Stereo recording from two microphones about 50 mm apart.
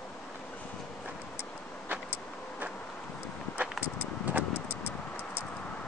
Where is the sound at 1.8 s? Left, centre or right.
Right.